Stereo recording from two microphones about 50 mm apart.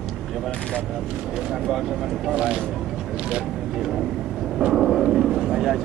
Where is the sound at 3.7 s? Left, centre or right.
Centre.